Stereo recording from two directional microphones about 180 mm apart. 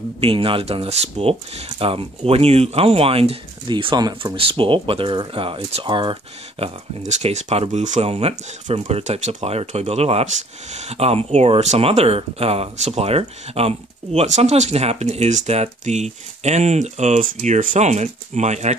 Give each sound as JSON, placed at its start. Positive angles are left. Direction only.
{"t": 0.2, "sound": "speech", "side_deg": -30}
{"t": 6.6, "sound": "speech", "side_deg": -40}